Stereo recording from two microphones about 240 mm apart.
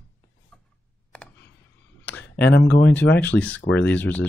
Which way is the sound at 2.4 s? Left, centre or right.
Left.